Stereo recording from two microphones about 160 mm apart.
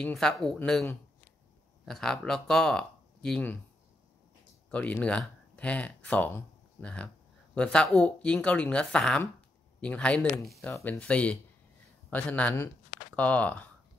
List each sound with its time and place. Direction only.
0.0 s speech: 5° left (ahead or behind)
1.9 s speech: 5° left (ahead or behind)
4.6 s speech: 10° left (ahead or behind)